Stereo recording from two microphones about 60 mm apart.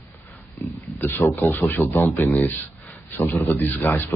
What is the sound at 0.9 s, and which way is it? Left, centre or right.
A man's voice, left.